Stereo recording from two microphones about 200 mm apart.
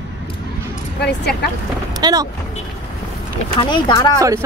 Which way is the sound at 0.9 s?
55° left (ahead or behind).